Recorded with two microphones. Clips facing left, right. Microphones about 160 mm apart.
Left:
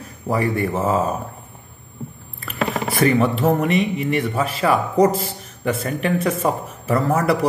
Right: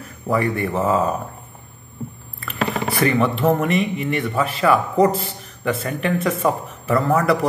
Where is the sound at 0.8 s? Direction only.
20° left (ahead or behind).